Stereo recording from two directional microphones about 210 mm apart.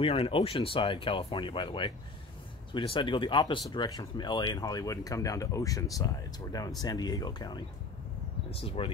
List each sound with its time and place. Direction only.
0.0 s speech: 25° left (ahead or behind)